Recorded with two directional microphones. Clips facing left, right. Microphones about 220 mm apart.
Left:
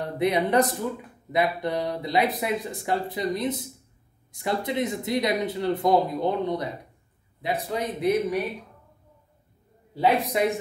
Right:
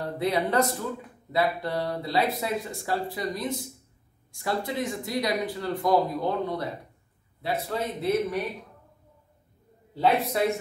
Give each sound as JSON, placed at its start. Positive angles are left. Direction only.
{"t": 0.2, "sound": "a man's voice", "side_deg": 20}
{"t": 9.9, "sound": "a man's voice", "side_deg": 15}